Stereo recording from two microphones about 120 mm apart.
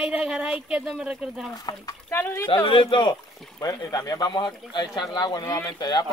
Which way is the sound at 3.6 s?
30° left (ahead or behind).